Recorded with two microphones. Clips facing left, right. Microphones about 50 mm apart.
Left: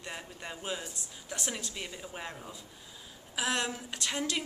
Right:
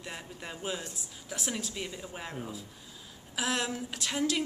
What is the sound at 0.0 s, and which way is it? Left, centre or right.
A woman's voice, centre.